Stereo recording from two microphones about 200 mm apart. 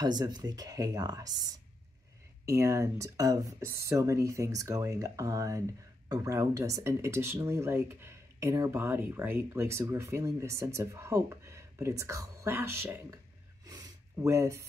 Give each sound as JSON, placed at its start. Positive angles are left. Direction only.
{"t": 0.0, "sound": "speech", "side_deg": -20}
{"t": 2.4, "sound": "speech", "side_deg": -15}
{"t": 13.7, "sound": "gasp", "side_deg": -20}